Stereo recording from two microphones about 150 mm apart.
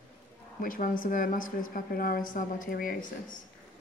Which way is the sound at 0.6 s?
65° left (ahead or behind).